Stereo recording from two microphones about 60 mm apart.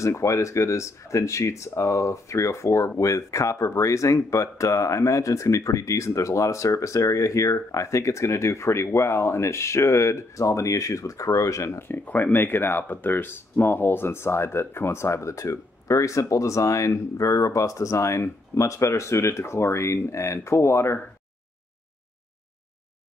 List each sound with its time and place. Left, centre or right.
0.0 s speech: left
11.9 s speech: left